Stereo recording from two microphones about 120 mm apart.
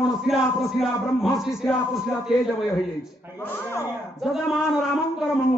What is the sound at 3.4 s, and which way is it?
Speech, 20° left (ahead or behind).